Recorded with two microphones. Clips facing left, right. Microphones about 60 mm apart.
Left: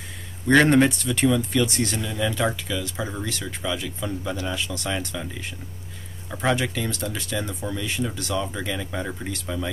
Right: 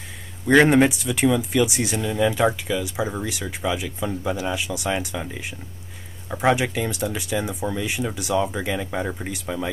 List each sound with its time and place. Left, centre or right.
0.5 s speech: centre